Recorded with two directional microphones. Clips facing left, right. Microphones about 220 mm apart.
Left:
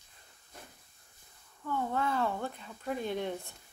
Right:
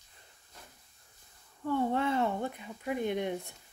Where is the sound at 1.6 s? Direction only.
30° right (ahead or behind).